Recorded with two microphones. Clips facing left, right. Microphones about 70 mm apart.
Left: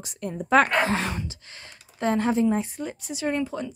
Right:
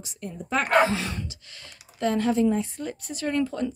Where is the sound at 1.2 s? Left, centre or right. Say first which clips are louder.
Left 2 dB; left.